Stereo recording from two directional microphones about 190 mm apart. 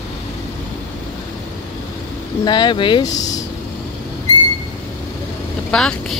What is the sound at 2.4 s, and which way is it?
Speech, 25° left (ahead or behind).